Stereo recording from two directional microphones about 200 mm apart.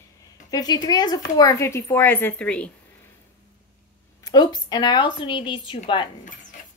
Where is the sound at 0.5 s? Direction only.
20° left (ahead or behind).